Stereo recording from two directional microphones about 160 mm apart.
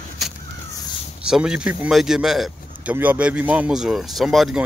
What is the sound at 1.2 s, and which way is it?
Speech, 5° right (ahead or behind).